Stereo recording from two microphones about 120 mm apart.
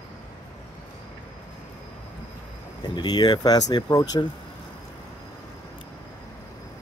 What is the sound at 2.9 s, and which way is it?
Speech, 35° left (ahead or behind).